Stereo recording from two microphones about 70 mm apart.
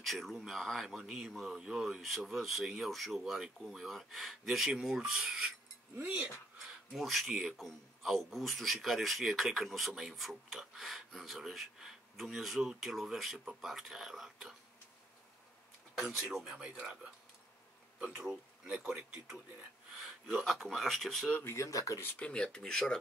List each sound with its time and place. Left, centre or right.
0.0 s speech: centre
5.9 s speech: right
7.0 s speech: centre
15.9 s speech: centre
16.5 s speech: centre
18.2 s speech: centre
21.5 s speech: left
22.2 s speech: centre